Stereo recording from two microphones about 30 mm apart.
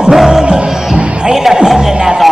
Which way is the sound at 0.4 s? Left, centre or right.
Right.